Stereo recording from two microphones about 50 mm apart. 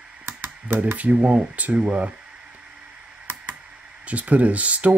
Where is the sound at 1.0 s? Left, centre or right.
Right.